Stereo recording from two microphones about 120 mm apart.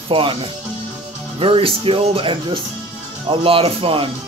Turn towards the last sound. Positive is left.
turn(degrees=-50)  # may be behind; listen again after turning